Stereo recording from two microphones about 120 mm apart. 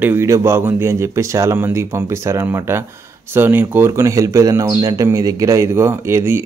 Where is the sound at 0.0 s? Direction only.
20° right (ahead or behind).